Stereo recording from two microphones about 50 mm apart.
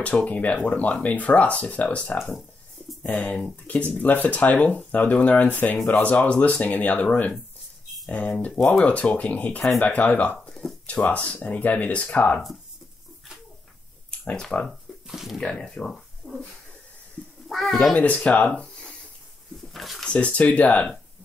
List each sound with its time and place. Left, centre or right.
0.0 s speech: left
3.2 s speech: left
3.9 s speech: left
8.1 s speech: left
14.5 s speech: centre
15.0 s speech: centre
15.4 s speech: centre
16.2 s a sound: right
17.5 s speech: centre
17.9 s speech: left
19.7 s speech: centre
20.1 s speech: left